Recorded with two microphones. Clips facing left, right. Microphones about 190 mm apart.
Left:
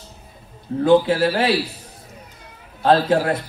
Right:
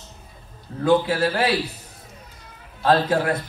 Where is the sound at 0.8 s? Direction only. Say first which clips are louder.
Left 4 dB; 25° left (ahead or behind).